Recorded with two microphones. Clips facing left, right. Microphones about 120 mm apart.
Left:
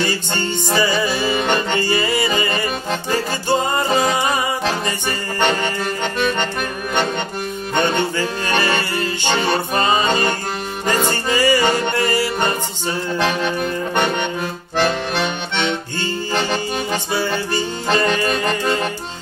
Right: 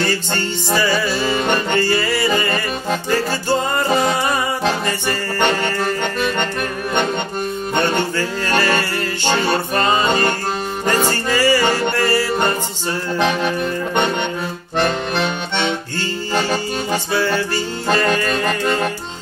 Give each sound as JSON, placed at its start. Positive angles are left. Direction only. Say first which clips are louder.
{"t": 0.7, "sound": "music", "louder": "even", "side_deg": 15}
{"t": 8.2, "sound": "music", "louder": "right 1 dB", "side_deg": 15}
{"t": 11.1, "sound": "music", "louder": "right 1 dB", "side_deg": 15}
{"t": 16.3, "sound": "accordion", "louder": "right 2 dB", "side_deg": -5}
{"t": 17.9, "sound": "music", "louder": "even", "side_deg": -40}
{"t": 18.2, "sound": "music", "louder": "even", "side_deg": 25}